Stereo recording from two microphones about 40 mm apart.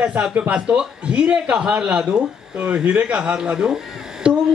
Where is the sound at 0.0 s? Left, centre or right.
Right.